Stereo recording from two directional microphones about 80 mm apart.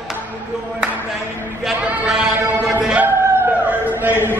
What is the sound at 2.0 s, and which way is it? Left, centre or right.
Music, centre.